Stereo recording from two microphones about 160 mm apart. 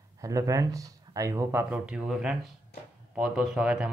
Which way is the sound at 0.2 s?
20° right (ahead or behind).